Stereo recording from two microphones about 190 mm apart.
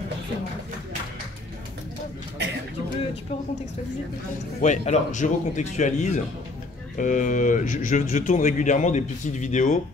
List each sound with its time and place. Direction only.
4.6 s speech: 40° left (ahead or behind)